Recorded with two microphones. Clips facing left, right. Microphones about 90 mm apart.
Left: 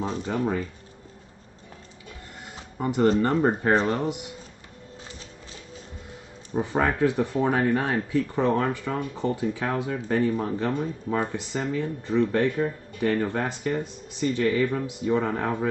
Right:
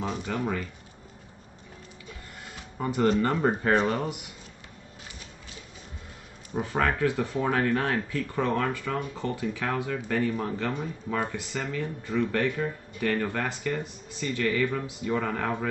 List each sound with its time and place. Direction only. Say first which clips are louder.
0.0 s speech: left 3 dB; 30° left (ahead or behind)
2.8 s speech: left 3 dB; 20° left (ahead or behind)
6.5 s speech: left 2 dB; 20° left (ahead or behind)